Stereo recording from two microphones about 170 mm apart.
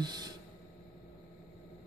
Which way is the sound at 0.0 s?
25° right (ahead or behind).